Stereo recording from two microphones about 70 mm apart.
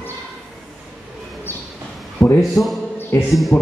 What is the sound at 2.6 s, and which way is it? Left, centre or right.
Speech, left.